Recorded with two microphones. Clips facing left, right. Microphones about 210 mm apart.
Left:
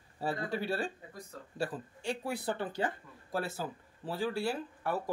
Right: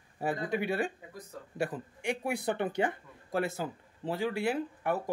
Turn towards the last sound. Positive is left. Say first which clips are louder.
# right 2 dB
turn(degrees=-20)  # may be behind; listen again after turning